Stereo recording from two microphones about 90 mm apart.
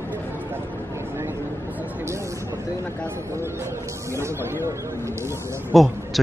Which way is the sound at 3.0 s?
30° right (ahead or behind).